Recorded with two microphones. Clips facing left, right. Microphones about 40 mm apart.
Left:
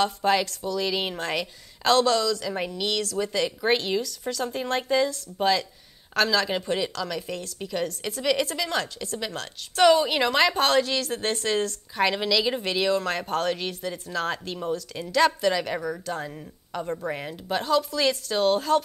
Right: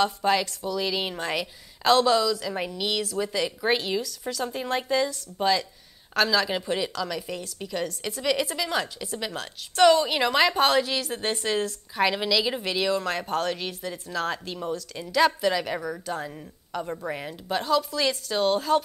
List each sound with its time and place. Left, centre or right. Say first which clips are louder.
0.0 s a woman's voice: even; centre